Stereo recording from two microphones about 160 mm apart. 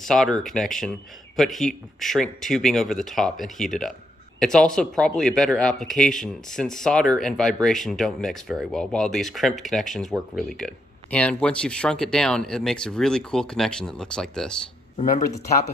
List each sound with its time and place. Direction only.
0.0 s speech: centre (ahead or behind)
15.0 s speech: 45° left (ahead or behind)